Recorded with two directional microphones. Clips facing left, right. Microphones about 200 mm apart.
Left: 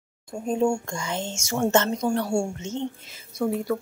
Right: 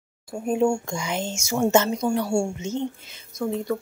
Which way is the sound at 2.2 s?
5° left (ahead or behind).